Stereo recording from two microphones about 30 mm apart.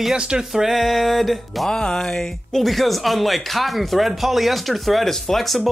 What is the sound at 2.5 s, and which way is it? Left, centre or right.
Speech, centre.